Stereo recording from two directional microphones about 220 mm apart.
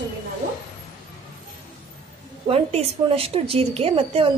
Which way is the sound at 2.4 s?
25° right (ahead or behind).